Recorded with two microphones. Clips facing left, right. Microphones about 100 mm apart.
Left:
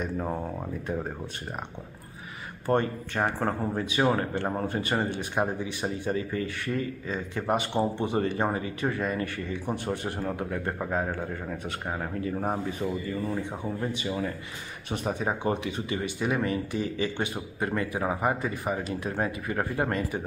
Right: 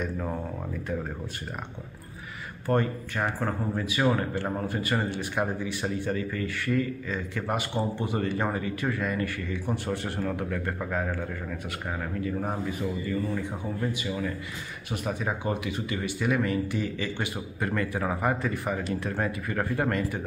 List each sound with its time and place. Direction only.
0.0 s speech: 20° left (ahead or behind)
2.6 s speech: 25° left (ahead or behind)